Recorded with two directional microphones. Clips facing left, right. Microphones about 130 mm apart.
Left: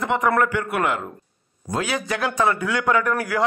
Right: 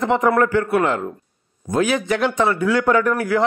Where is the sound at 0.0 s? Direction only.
35° right (ahead or behind).